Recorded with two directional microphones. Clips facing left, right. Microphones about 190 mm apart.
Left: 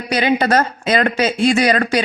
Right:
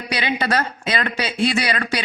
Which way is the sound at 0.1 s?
45° left (ahead or behind).